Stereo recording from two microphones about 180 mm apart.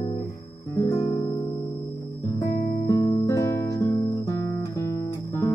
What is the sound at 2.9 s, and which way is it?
Music, 20° left (ahead or behind).